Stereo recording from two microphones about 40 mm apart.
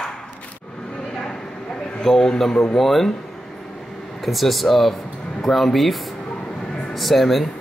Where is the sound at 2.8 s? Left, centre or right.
Centre.